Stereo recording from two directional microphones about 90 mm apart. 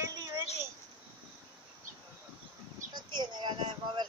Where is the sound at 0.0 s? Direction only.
35° right (ahead or behind).